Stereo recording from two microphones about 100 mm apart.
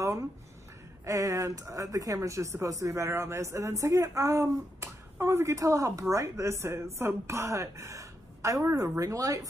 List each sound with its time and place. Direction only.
1.0 s speech: 35° right (ahead or behind)